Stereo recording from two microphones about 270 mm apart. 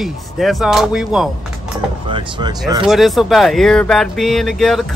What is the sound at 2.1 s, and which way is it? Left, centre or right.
Speech, centre.